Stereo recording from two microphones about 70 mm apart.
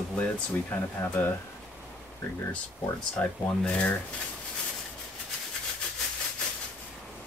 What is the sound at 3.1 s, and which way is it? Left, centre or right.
Speech, centre.